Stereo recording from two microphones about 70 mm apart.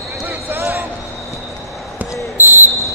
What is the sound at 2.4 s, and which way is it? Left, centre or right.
Basketball bounce, right.